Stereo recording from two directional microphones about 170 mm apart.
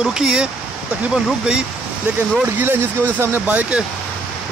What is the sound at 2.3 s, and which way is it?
Speech, 10° right (ahead or behind).